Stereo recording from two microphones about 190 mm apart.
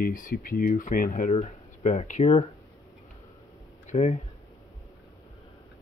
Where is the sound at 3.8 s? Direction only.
35° left (ahead or behind).